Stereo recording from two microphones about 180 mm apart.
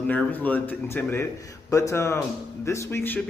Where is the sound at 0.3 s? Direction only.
10° left (ahead or behind).